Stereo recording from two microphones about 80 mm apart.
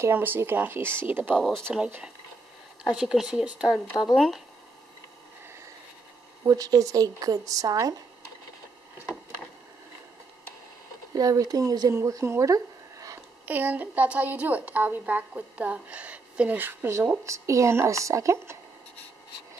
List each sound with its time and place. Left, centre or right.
0.0 s a woman's voice: right
1.5 s speech: centre
2.8 s speech: centre
6.4 s a woman's voice: right
11.1 s a woman's voice: right
11.9 s a woman's voice: right
13.5 s a woman's voice: right
17.2 s speech: right